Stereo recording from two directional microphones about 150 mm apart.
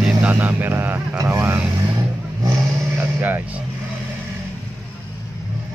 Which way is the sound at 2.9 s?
15° right (ahead or behind).